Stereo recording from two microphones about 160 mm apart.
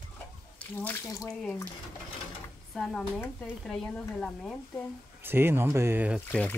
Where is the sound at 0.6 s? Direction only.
10° left (ahead or behind).